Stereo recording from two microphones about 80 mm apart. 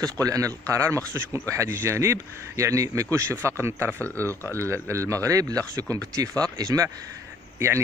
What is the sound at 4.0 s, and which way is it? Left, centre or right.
Speech, left.